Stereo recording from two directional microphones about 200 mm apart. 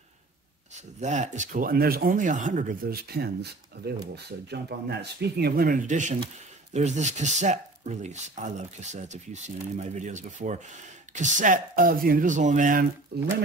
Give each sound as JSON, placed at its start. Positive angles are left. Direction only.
{"t": 0.7, "sound": "speech", "side_deg": -35}
{"t": 13.1, "sound": "speech", "side_deg": -55}